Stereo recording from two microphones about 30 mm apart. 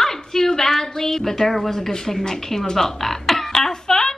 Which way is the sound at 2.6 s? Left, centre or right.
Centre.